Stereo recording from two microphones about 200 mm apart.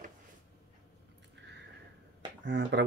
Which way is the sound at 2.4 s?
60° right (ahead or behind).